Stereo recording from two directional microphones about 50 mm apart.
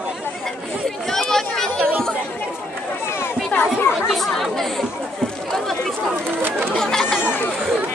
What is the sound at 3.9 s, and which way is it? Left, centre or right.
Chatter, centre.